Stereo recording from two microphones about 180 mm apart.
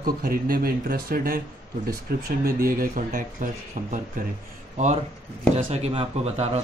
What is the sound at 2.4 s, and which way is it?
Speech, 55° right (ahead or behind).